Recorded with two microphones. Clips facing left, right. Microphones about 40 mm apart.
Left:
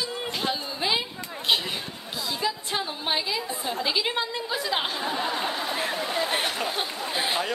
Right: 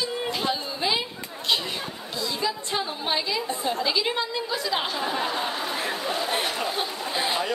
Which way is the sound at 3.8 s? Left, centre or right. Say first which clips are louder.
Left 2 dB; centre.